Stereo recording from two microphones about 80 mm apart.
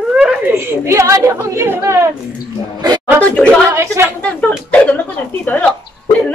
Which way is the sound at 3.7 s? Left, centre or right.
Right.